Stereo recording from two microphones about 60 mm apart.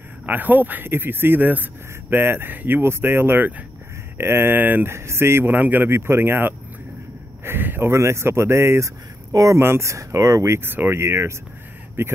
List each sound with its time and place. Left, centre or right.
0.3 s speech: right
4.2 s speech: right
4.9 s speech: right
5.9 s speech: right
7.4 s a sound: right
7.9 s speech: right
9.6 s speech: right
10.6 s speech: right
11.0 s speech: right
12.0 s speech: right